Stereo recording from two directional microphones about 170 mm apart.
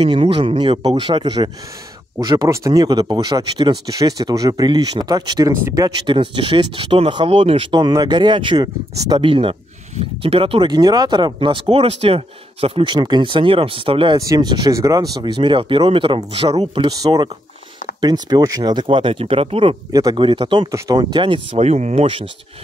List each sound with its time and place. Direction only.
0.0 s speech: 30° right (ahead or behind)
6.0 s speech: 30° right (ahead or behind)
17.0 s speech: 25° right (ahead or behind)